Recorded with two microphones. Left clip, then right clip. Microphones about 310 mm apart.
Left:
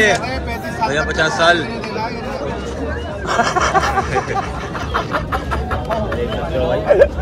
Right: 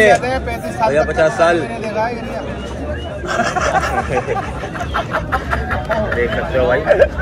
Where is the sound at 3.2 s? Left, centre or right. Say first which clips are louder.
Left 1 dB; centre.